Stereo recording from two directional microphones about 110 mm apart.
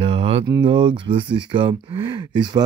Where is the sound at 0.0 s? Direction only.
60° right (ahead or behind).